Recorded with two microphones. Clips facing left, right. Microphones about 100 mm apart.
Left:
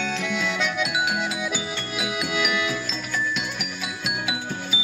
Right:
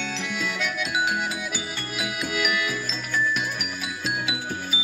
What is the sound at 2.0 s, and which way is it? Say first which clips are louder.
Music: left 1 dB; 25° left (ahead or behind).